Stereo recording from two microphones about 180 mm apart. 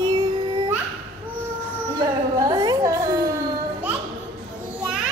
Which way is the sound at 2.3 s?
20° right (ahead or behind).